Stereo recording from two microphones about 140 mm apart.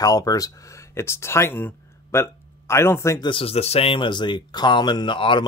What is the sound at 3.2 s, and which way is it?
Speech, 40° left (ahead or behind).